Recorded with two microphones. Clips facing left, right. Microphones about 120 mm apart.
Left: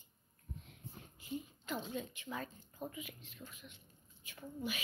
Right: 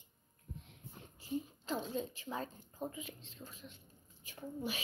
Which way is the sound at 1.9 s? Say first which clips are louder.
Right 3 dB; 35° right (ahead or behind).